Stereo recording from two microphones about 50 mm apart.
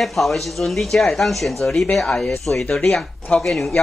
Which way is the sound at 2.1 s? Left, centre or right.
Left.